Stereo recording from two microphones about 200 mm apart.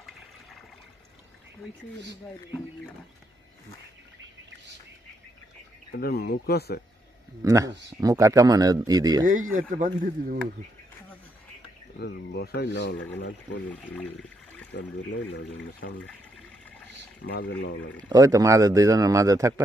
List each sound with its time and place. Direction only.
5.9 s speech: 50° left (ahead or behind)
7.4 s speech: 15° right (ahead or behind)
9.5 s speech: 40° right (ahead or behind)
12.3 s speech: 55° left (ahead or behind)
13.7 s speech: 5° left (ahead or behind)
14.7 s speech: 65° left (ahead or behind)
17.3 s speech: 55° left (ahead or behind)
18.0 s speech: 15° right (ahead or behind)